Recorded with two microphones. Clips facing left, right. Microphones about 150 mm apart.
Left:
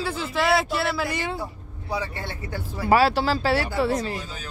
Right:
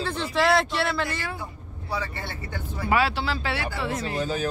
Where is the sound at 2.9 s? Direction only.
40° left (ahead or behind).